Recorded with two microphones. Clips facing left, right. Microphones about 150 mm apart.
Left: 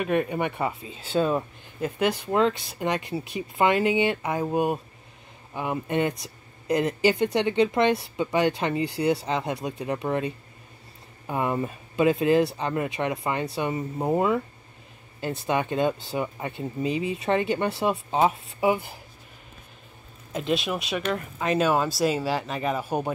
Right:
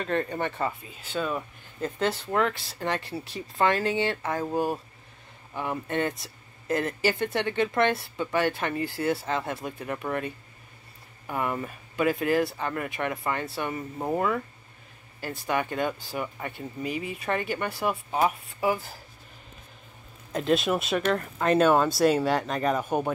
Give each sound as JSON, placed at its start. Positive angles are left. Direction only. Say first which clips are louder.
{"t": 0.0, "sound": "speech", "louder": "left 3 dB", "side_deg": 15}
{"t": 1.8, "sound": "speech", "louder": "left 3 dB", "side_deg": 15}
{"t": 20.3, "sound": "speech", "louder": "right 2 dB", "side_deg": 0}